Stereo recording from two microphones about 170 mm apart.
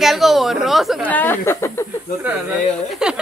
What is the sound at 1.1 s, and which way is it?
Speech, 10° left (ahead or behind).